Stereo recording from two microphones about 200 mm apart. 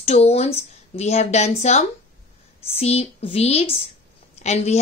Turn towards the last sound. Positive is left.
turn(degrees=35)  # may be behind; listen again after turning